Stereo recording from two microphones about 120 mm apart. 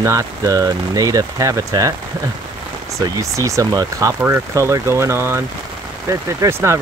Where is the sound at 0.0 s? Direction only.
25° right (ahead or behind).